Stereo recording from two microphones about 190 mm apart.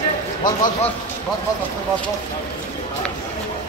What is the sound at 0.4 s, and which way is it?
Speech, 25° left (ahead or behind).